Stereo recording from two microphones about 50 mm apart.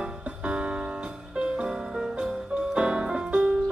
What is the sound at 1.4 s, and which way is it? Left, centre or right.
Music, centre.